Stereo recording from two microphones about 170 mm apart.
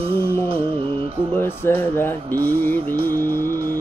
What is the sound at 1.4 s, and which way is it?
Music, 10° left (ahead or behind).